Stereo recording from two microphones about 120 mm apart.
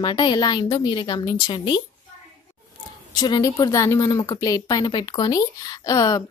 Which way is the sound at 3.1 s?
35° left (ahead or behind).